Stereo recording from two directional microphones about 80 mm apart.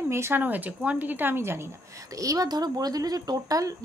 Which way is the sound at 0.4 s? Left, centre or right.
Right.